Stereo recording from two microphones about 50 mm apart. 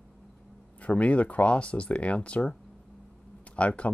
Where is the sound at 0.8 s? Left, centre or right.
Left.